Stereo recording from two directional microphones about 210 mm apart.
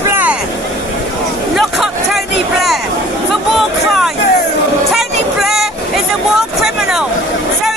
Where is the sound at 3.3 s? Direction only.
Centre (ahead or behind).